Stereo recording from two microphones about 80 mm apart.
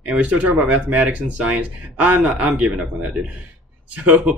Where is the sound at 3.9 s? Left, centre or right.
Centre.